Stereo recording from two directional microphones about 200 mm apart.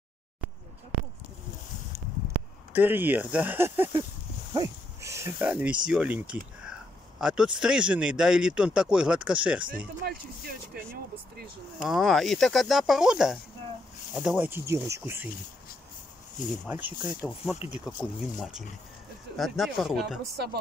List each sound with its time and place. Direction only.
2.7 s speech: 10° right (ahead or behind)
10.0 s speech: 50° right (ahead or behind)
11.8 s speech: centre (ahead or behind)
16.6 s speech: 10° right (ahead or behind)